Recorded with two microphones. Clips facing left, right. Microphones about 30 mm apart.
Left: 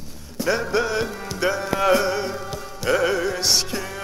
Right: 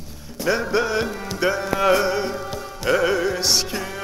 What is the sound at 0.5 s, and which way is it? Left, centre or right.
Music, centre.